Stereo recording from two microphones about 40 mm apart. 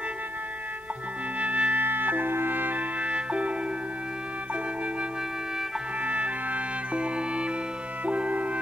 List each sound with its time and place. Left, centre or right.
1.4 s music: right
1.8 s music: right
3.0 s music: right
6.0 s music: right
8.0 s music: right